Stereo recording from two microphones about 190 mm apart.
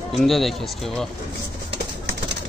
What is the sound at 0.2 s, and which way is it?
Speech, centre (ahead or behind).